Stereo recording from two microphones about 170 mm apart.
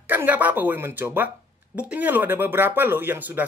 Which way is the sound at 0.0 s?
10° right (ahead or behind).